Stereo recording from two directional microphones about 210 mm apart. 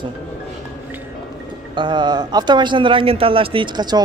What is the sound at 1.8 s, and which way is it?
Speech, 20° right (ahead or behind).